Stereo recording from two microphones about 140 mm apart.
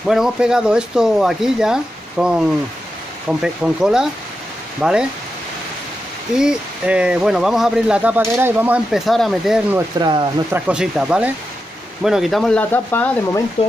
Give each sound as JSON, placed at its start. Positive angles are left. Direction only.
{"t": 0.0, "sound": "speech", "side_deg": -5}
{"t": 6.3, "sound": "speech", "side_deg": -5}
{"t": 9.9, "sound": "speech", "side_deg": -35}
{"t": 10.5, "sound": "speech", "side_deg": -5}